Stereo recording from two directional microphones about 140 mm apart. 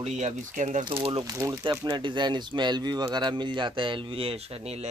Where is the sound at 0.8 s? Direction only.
40° right (ahead or behind).